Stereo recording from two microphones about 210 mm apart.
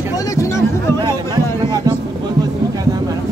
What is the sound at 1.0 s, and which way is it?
Speech, 20° right (ahead or behind).